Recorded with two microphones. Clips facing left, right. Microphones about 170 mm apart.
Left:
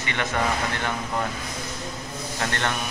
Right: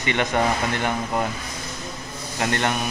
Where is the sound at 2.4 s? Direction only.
15° right (ahead or behind).